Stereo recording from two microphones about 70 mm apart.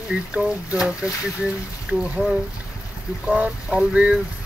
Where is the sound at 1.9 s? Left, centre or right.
Right.